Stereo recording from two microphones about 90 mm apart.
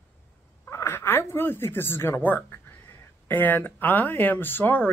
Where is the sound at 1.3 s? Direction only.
25° left (ahead or behind).